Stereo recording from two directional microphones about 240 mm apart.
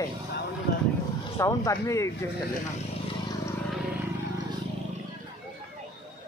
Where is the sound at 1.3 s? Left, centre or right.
Centre.